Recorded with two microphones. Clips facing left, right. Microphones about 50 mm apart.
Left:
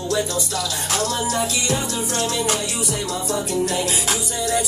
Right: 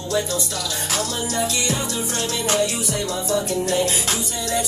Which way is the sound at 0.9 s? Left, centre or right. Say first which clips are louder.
Left 3 dB; centre.